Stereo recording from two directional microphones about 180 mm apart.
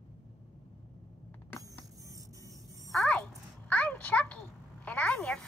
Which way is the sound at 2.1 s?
20° right (ahead or behind).